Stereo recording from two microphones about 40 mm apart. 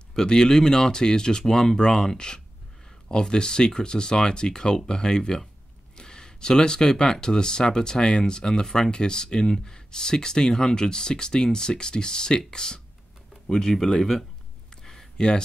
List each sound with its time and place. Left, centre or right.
0.1 s speech: centre
14.8 s a sound: centre
15.1 s speech: centre